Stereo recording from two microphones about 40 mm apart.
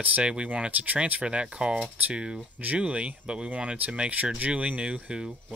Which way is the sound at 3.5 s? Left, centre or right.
Right.